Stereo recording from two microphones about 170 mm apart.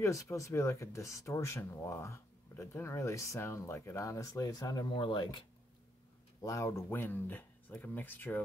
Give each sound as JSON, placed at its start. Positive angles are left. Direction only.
{"t": 0.0, "sound": "speech", "side_deg": 20}
{"t": 6.4, "sound": "speech", "side_deg": 15}